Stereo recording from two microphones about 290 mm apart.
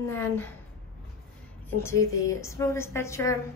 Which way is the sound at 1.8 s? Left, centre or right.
Centre.